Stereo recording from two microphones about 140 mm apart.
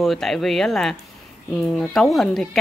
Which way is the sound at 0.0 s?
Centre (ahead or behind).